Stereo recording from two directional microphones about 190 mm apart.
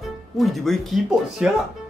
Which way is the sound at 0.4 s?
Centre (ahead or behind).